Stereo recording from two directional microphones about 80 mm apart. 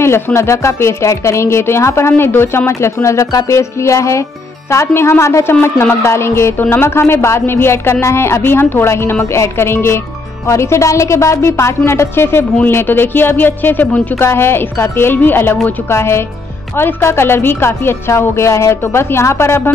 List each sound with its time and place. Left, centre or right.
0.0 s a woman's voice: left